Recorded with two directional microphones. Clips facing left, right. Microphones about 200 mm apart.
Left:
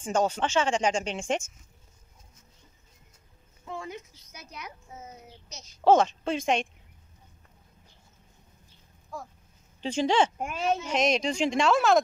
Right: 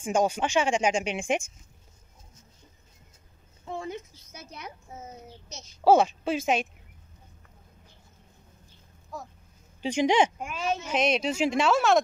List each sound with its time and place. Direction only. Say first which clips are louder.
0.0 s speech: right 1 dB; 10° right (ahead or behind)
3.7 s a woman's voice: right 3 dB; 25° right (ahead or behind)
5.9 s speech: right 1 dB; 10° right (ahead or behind)
9.8 s speech: right 2 dB; 15° right (ahead or behind)
10.4 s speech: left 2 dB; 55° left (ahead or behind)
10.9 s speech: right 3 dB; centre (ahead or behind)